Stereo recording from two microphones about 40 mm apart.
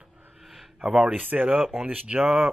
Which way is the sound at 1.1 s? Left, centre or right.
Right.